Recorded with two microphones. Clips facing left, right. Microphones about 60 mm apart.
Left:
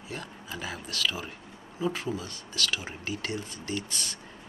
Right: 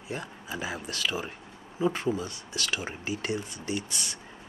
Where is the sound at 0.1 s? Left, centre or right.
Centre.